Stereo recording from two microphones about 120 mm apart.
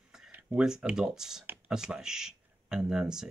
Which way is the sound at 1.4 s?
15° right (ahead or behind).